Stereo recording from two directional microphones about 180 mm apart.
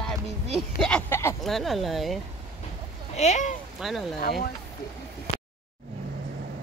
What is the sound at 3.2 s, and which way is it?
Speech, 40° left (ahead or behind).